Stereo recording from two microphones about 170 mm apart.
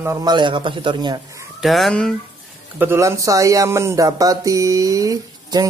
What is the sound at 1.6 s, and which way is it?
Speech, centre (ahead or behind).